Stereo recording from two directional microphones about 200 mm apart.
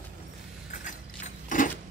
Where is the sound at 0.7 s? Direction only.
40° left (ahead or behind).